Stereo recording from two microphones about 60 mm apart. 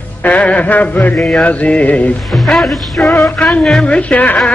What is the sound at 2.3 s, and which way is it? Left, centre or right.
A woman's voice, centre.